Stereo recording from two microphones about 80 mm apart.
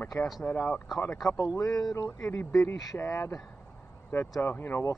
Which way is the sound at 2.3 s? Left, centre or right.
Left.